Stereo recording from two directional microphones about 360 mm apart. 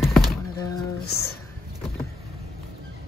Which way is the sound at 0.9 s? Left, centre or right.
Left.